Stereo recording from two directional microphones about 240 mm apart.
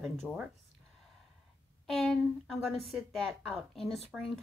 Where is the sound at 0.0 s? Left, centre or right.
Centre.